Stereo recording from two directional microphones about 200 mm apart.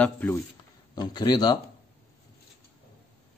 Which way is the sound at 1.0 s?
20° left (ahead or behind).